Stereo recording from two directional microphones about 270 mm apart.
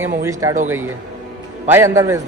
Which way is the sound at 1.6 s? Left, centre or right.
Centre.